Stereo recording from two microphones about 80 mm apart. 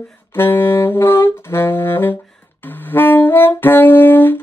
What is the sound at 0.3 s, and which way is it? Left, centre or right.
Saxophone, left.